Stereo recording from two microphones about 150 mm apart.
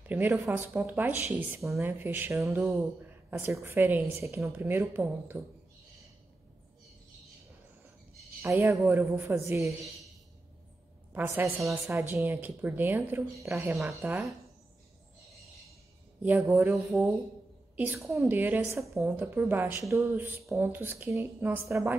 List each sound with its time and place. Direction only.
0.0 s a woman's voice: 10° right (ahead or behind)
8.4 s a woman's voice: 15° right (ahead or behind)
11.1 s a woman's voice: 15° right (ahead or behind)
16.2 s a woman's voice: 10° right (ahead or behind)